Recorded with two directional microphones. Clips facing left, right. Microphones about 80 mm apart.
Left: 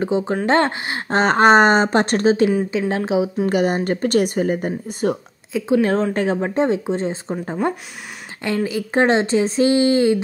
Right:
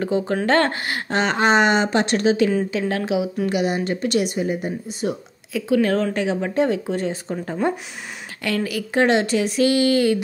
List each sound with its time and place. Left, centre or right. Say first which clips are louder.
0.0 s speech: left 1 dB; left
2.5 s speech: left 2 dB; centre
2.9 s speech: left 3 dB; left
3.5 s speech: left 4 dB; left
5.5 s speech: left 2 dB; left
6.1 s speech: left 2 dB; left